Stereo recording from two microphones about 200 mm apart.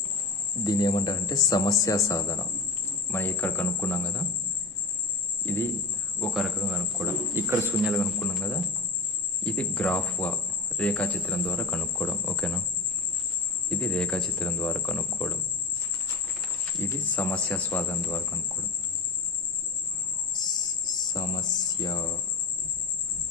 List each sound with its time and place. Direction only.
0.7 s speech: 20° left (ahead or behind)
5.4 s speech: 10° left (ahead or behind)
6.2 s speech: centre (ahead or behind)
13.7 s speech: 5° left (ahead or behind)
16.8 s speech: 10° left (ahead or behind)
20.8 s cricket: 20° left (ahead or behind)